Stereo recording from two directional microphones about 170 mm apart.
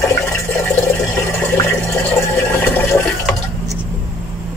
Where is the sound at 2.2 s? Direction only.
15° left (ahead or behind).